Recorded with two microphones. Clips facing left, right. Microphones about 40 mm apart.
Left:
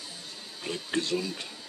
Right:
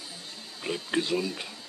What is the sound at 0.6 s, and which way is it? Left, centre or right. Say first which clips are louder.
Speech: right 2 dB; centre.